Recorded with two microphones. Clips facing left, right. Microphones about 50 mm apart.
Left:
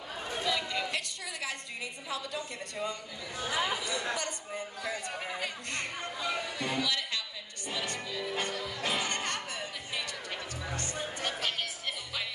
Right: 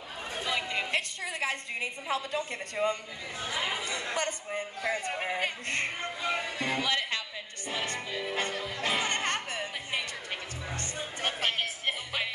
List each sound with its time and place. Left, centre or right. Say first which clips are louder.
0.4 s a woman's voice: right 1 dB; right
7.7 s music: right 2 dB; right